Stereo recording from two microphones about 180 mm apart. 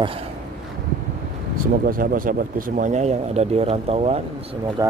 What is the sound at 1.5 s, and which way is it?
Speech, 50° right (ahead or behind).